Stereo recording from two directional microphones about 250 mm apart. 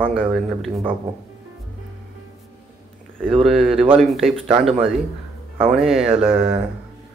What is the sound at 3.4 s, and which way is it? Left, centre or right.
Speech, centre.